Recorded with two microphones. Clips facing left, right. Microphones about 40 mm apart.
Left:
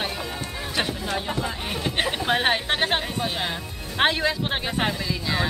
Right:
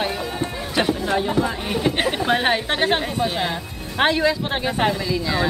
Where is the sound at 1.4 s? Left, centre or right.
Centre.